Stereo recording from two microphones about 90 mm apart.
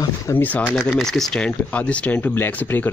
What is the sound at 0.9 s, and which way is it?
Speech, 5° left (ahead or behind).